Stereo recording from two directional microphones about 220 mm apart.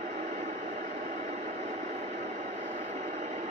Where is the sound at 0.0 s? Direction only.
35° right (ahead or behind).